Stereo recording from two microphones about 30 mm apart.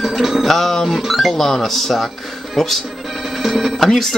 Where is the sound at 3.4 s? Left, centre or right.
Centre.